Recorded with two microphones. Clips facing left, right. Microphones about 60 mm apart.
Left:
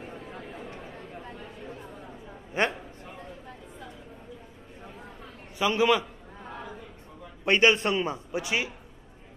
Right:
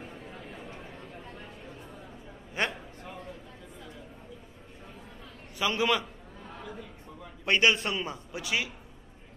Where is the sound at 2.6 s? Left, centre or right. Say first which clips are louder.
Left 4 dB; left.